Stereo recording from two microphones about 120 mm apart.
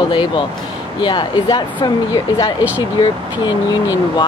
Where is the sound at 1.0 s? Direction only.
40° left (ahead or behind).